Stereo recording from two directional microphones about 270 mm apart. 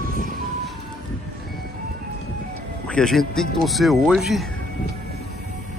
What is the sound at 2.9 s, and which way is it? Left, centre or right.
Speech, centre.